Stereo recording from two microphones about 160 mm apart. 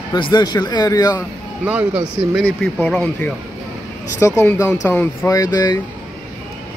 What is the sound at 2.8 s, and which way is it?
A man's voice, 5° left (ahead or behind).